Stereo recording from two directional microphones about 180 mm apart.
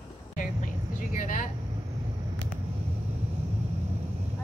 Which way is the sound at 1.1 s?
45° left (ahead or behind).